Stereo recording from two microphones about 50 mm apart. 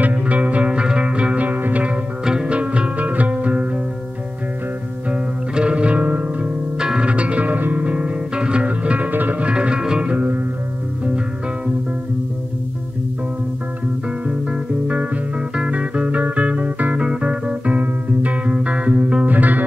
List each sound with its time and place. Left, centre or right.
0.0 s music: right
2.2 s music: centre
5.1 s music: right
6.8 s music: centre; by 7.8 s right
7.8 s music: right
9.5 s music: right
14.2 s music: right